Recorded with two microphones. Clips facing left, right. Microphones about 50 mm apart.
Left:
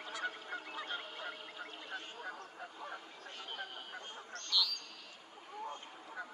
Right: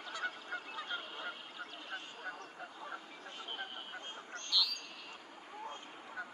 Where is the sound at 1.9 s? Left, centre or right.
Right.